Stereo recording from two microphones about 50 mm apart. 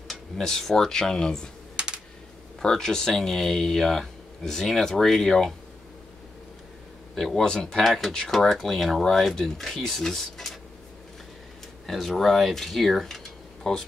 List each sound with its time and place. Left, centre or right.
0.1 s speech: centre
2.6 s speech: centre
7.2 s speech: centre
7.8 s speech: centre
11.8 s speech: centre